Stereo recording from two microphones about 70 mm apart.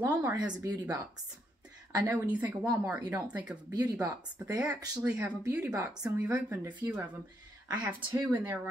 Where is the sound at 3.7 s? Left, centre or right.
Right.